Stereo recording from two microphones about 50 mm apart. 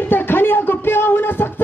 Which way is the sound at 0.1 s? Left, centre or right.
Left.